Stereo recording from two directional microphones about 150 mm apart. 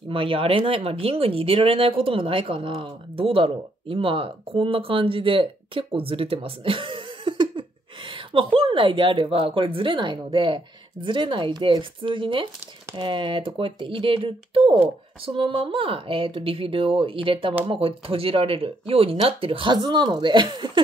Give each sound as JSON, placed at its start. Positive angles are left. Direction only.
{"t": 0.1, "sound": "speech", "side_deg": -35}